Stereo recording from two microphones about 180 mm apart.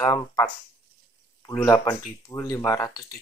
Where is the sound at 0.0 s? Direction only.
20° left (ahead or behind).